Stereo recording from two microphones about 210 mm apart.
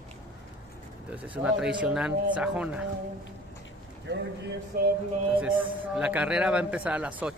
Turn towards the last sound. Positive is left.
turn(degrees=-5)  # may be behind; listen again after turning